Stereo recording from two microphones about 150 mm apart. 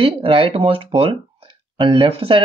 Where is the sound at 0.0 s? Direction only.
35° right (ahead or behind).